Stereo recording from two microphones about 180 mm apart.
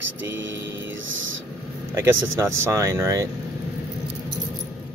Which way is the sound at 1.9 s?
15° right (ahead or behind).